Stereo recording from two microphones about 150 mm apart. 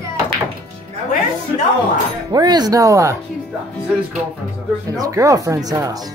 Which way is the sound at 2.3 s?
25° right (ahead or behind).